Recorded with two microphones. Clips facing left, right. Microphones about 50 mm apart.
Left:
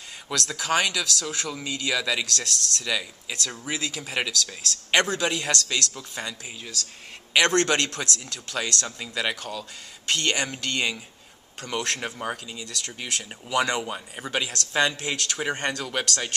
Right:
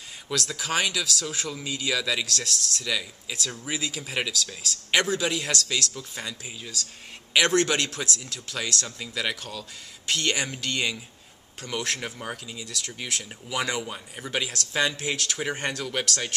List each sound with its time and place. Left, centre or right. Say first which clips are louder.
0.5 s speech: left 4 dB; centre
2.8 s speech: left 1 dB; centre
3.4 s a man's voice: even; centre
8.8 s speech: left 2 dB; centre
12.0 s speech: left 3 dB; centre
12.5 s speech: even; centre
13.7 s speech: left 2 dB; centre
14.3 s speech: left 2 dB; centre